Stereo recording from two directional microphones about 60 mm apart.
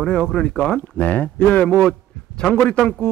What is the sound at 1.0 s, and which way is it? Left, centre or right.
A man's voice, left.